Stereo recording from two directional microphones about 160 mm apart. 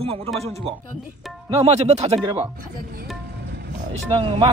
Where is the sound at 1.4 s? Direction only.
40° right (ahead or behind).